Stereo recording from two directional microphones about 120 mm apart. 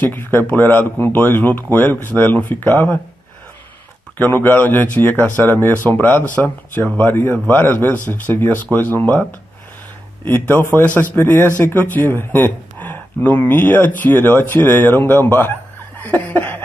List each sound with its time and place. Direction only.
0.0 s speech: 20° left (ahead or behind)
4.2 s speech: 15° left (ahead or behind)
10.2 s speech: 20° left (ahead or behind)
16.0 s laughter: 15° left (ahead or behind)